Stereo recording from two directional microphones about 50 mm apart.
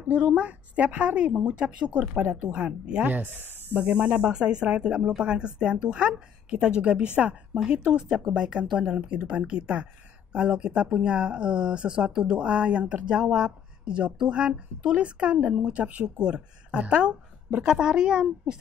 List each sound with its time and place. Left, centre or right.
0.1 s speech: right
3.1 s speech: right
3.7 s speech: right